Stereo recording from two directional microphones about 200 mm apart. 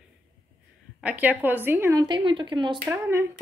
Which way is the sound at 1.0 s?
10° right (ahead or behind).